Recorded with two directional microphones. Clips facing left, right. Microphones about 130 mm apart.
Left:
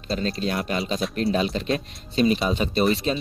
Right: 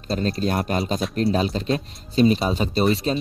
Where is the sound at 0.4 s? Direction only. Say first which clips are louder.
Right 3 dB; 45° right (ahead or behind).